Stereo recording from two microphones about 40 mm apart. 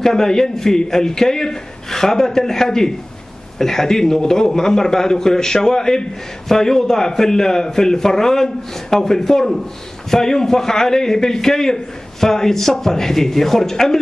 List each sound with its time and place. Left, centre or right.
0.0 s a man's voice: centre